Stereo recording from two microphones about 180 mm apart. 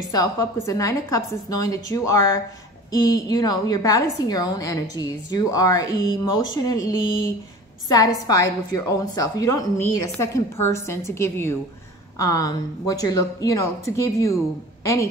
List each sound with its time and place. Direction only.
0.1 s a woman's voice: 20° left (ahead or behind)